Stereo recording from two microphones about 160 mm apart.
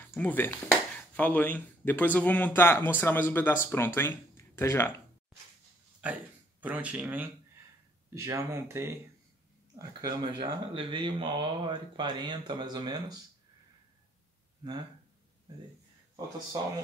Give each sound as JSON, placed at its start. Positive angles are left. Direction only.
{"t": 0.1, "sound": "speech", "side_deg": 10}
{"t": 6.0, "sound": "speech", "side_deg": -10}